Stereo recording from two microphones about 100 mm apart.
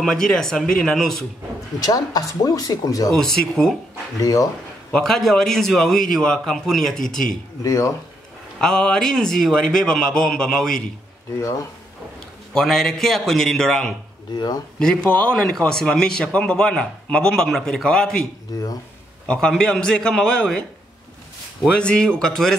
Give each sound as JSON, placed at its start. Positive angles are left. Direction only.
{"t": 0.0, "sound": "a man's voice", "side_deg": 5}
{"t": 1.8, "sound": "speech", "side_deg": 40}
{"t": 3.1, "sound": "a man's voice", "side_deg": 5}
{"t": 4.2, "sound": "speech", "side_deg": 35}
{"t": 4.9, "sound": "a man's voice", "side_deg": 5}
{"t": 7.6, "sound": "speech", "side_deg": 30}
{"t": 8.5, "sound": "a man's voice", "side_deg": 5}
{"t": 12.5, "sound": "a man's voice", "side_deg": 5}
{"t": 15.0, "sound": "a man's voice", "side_deg": 10}
{"t": 18.5, "sound": "speech", "side_deg": 40}
{"t": 19.2, "sound": "a man's voice", "side_deg": 10}
{"t": 21.7, "sound": "a man's voice", "side_deg": 10}